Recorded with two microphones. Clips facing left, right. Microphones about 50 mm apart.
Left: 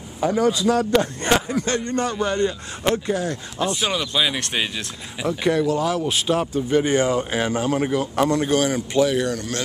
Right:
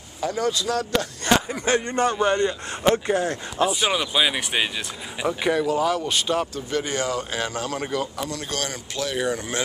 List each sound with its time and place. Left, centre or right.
0.2 s a man's voice: centre
1.3 s a sound: left
1.6 s speech: centre
2.3 s a man's voice: centre
3.1 s speech: right
3.5 s speech: centre
6.5 s speech: left
8.3 s speech: left
8.5 s a man's voice: centre
9.2 s speech: centre